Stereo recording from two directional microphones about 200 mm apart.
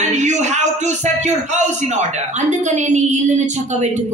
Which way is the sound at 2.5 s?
35° right (ahead or behind).